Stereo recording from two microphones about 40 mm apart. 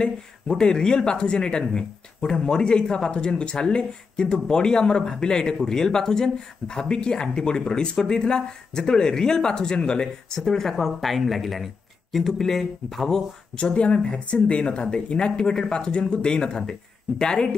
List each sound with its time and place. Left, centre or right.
0.0 s speech: left
10.7 s speech: centre
13.7 s speech: left